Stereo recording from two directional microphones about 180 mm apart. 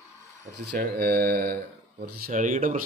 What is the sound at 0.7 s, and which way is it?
Speech, 60° right (ahead or behind).